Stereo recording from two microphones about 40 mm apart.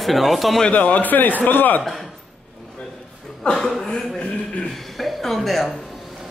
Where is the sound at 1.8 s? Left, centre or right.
Centre.